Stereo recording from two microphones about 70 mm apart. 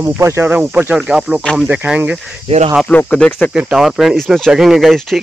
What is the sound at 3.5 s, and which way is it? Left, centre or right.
Speech, centre.